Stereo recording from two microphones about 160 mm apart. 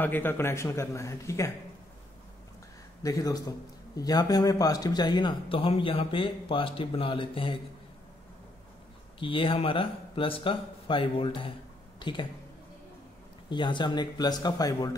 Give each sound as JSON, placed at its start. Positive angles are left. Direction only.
{"t": 0.0, "sound": "a man's voice", "side_deg": 10}
{"t": 3.0, "sound": "a man's voice", "side_deg": 20}
{"t": 9.2, "sound": "speech", "side_deg": 35}
{"t": 13.5, "sound": "a man's voice", "side_deg": 30}